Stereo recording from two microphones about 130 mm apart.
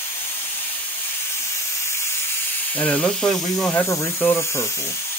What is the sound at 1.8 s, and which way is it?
Steam, 20° left (ahead or behind).